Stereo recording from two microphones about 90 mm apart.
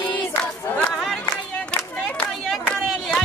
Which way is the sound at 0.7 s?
20° left (ahead or behind).